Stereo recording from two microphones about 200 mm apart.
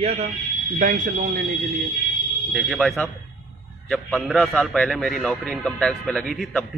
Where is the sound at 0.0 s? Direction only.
30° right (ahead or behind); by 1.4 s 45° right (ahead or behind).